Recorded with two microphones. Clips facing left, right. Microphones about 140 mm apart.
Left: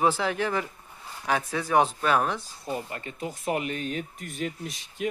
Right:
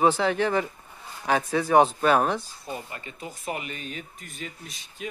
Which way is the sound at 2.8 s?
50° left (ahead or behind).